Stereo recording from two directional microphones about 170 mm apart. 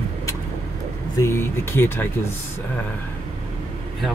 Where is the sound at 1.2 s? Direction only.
15° left (ahead or behind).